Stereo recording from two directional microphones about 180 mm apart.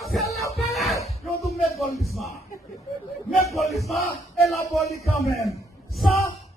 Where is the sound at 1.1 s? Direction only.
35° left (ahead or behind).